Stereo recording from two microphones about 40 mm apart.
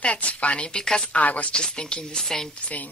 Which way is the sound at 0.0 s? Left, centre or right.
Left.